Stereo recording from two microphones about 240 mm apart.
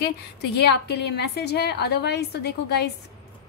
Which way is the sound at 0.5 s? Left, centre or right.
Left.